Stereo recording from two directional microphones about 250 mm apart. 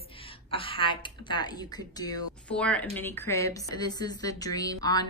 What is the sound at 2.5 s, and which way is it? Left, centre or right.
A woman's voice, centre.